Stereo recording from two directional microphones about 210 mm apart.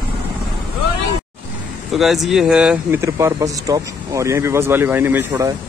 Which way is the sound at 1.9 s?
Centre (ahead or behind).